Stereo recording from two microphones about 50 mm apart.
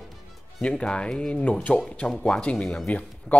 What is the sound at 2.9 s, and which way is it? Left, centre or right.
Speech, left.